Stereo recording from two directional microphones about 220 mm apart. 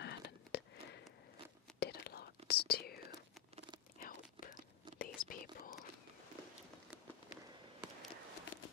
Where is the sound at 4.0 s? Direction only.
40° left (ahead or behind).